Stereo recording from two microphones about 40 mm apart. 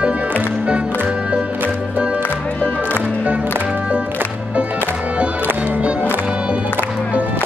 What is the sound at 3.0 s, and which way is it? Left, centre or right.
Music, right.